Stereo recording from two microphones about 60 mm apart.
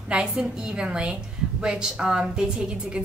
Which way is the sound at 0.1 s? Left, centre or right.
Centre.